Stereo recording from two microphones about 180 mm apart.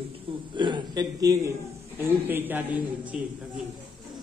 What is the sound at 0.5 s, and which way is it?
A man's voice, 25° right (ahead or behind).